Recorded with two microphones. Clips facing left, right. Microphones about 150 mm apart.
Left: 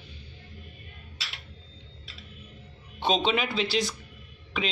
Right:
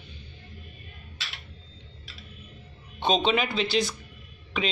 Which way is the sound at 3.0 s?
5° left (ahead or behind).